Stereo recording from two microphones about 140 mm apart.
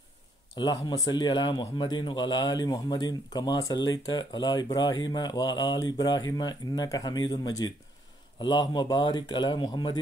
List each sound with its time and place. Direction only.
0.6 s a man's voice: 30° left (ahead or behind)